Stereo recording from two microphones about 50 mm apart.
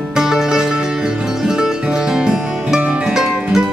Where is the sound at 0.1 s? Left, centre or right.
Centre.